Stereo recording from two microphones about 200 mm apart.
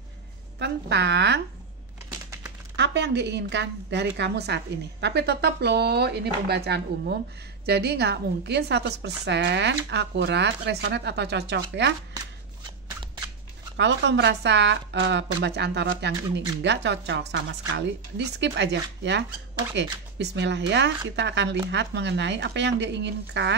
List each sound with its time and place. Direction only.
0.6 s a woman's voice: 60° right (ahead or behind)
2.7 s a woman's voice: 60° right (ahead or behind)
13.7 s a woman's voice: 60° right (ahead or behind)